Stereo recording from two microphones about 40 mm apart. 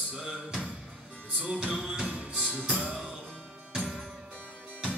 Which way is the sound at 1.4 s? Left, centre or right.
Right.